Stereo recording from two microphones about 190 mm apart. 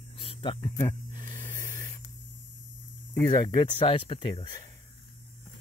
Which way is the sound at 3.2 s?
20° left (ahead or behind).